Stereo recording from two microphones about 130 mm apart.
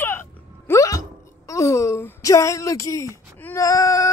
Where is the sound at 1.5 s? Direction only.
20° left (ahead or behind).